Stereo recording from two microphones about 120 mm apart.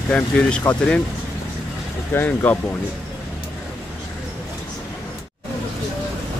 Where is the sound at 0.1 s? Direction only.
10° left (ahead or behind).